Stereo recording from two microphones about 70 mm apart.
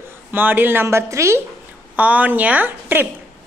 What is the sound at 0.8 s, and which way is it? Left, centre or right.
Speech, right.